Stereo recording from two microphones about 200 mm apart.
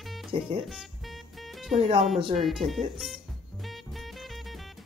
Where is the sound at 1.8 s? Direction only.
30° right (ahead or behind).